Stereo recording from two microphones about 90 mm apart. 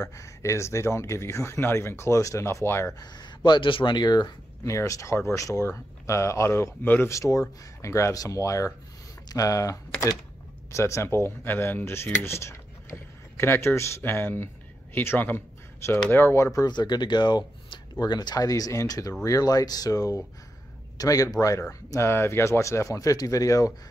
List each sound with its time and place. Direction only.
0.0 s speech: 35° left (ahead or behind)
3.0 s speech: 55° left (ahead or behind)
4.6 s speech: 35° left (ahead or behind)
16.6 s speech: 50° left (ahead or behind)